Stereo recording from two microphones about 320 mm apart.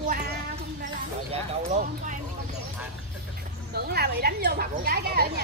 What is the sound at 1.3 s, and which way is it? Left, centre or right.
Speech, right.